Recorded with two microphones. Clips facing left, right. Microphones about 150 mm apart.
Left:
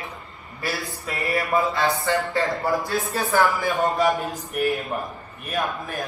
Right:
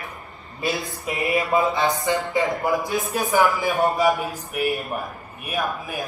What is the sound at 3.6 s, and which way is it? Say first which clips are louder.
Speech: right 1 dB; 15° right (ahead or behind).